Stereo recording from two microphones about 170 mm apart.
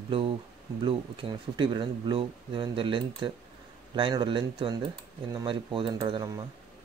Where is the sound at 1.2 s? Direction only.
30° right (ahead or behind).